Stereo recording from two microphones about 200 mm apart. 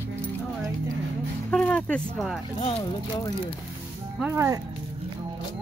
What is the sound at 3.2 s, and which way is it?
Speech, 20° left (ahead or behind).